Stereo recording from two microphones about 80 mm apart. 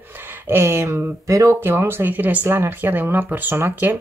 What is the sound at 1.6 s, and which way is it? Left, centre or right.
Speech, right.